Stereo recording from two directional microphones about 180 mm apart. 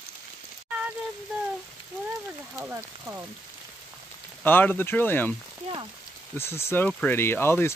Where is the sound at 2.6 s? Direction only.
10° right (ahead or behind).